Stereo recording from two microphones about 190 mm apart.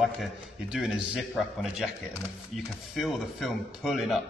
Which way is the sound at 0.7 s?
5° right (ahead or behind).